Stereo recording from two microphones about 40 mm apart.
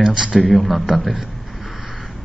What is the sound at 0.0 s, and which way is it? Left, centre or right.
Speech, centre.